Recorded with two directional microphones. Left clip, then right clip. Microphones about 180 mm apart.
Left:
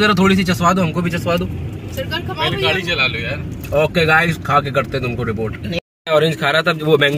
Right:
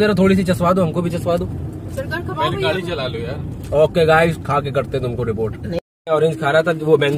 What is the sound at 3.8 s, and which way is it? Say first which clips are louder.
Speech: right 1 dB; centre (ahead or behind).